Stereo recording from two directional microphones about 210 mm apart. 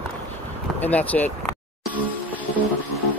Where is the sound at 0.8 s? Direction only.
5° left (ahead or behind).